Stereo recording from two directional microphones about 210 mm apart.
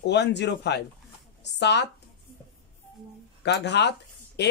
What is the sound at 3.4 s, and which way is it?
A woman's voice, 55° left (ahead or behind).